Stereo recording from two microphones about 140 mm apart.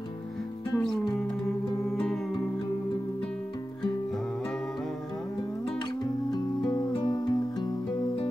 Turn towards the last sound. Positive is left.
turn(degrees=30)  # may be behind; listen again after turning